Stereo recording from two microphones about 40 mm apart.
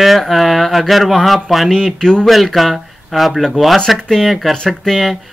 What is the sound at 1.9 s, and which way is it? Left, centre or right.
Speech, centre.